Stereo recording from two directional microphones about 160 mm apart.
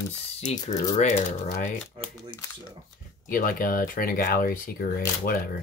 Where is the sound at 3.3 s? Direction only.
60° left (ahead or behind).